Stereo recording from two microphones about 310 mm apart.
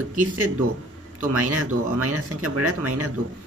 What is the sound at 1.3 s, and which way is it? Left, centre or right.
A man's voice, right.